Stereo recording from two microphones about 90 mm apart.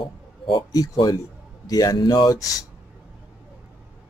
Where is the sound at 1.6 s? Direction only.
40° left (ahead or behind).